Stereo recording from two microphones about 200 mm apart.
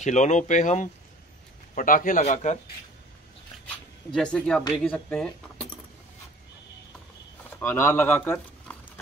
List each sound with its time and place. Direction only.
0.0 s speech: 35° left (ahead or behind)
3.6 s speech: 5° left (ahead or behind)
7.4 s speech: 10° left (ahead or behind)